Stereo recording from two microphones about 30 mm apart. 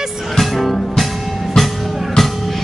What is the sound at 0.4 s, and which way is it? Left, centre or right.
Music, centre.